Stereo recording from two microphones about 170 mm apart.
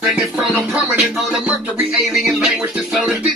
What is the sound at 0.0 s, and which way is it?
Music, 5° right (ahead or behind).